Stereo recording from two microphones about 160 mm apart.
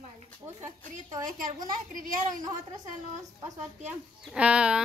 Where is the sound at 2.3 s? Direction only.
25° right (ahead or behind).